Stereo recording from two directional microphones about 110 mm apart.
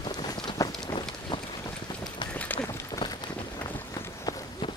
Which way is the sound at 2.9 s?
40° left (ahead or behind).